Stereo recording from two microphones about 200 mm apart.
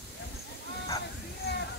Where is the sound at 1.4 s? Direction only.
55° left (ahead or behind).